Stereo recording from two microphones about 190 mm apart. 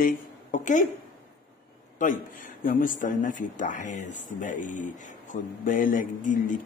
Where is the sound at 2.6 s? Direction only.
45° left (ahead or behind).